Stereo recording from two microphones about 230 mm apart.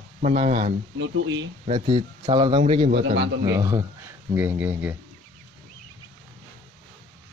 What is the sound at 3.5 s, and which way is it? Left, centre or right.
Speech, centre.